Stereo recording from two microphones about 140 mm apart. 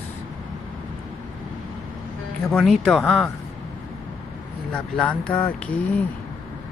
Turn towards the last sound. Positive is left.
turn(degrees=15)  # may be behind; listen again after turning